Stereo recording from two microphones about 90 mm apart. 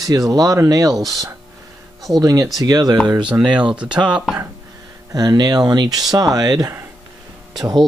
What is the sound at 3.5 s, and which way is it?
Speech, 15° right (ahead or behind).